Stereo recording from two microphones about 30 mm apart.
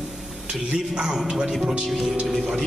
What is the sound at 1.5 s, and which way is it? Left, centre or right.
Speech, centre.